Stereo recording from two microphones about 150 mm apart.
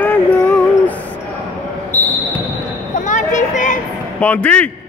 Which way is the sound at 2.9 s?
55° left (ahead or behind).